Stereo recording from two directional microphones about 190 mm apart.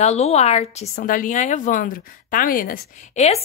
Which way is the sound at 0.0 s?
35° left (ahead or behind).